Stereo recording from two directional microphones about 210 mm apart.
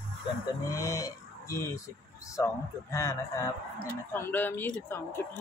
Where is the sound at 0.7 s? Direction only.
15° left (ahead or behind).